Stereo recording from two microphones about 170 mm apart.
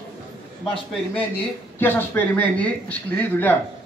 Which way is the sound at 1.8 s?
10° left (ahead or behind).